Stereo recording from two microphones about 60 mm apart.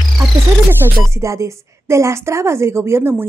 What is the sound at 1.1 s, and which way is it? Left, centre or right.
A woman's voice, right.